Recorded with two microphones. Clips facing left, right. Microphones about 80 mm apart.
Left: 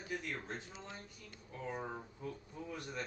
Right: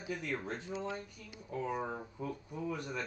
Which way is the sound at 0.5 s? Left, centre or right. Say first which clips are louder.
Right 8 dB; right.